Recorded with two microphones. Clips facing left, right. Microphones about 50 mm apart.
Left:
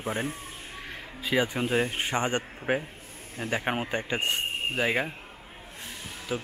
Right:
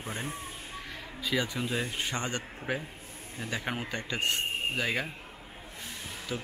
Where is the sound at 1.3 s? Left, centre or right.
Left.